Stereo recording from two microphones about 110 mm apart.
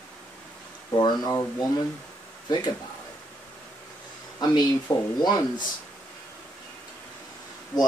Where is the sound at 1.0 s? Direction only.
40° left (ahead or behind).